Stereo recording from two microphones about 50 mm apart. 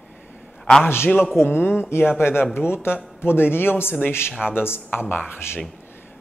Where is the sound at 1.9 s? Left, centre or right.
Left.